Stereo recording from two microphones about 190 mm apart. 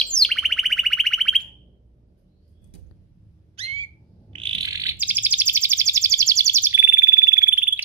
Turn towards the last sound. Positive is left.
turn(degrees=-10)  # may be behind; listen again after turning